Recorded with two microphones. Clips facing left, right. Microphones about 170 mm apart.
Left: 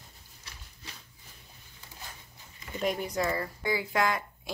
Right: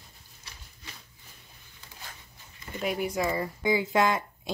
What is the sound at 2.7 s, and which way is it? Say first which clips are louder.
Speech: right 1 dB; 5° right (ahead or behind).